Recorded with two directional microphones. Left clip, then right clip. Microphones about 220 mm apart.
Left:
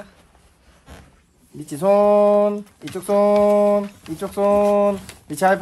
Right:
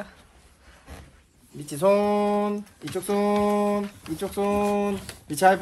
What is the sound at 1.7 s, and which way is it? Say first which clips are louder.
Speech: left 6 dB; 35° left (ahead or behind).